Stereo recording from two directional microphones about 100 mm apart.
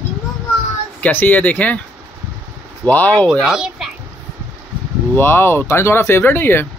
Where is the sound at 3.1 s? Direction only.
5° left (ahead or behind).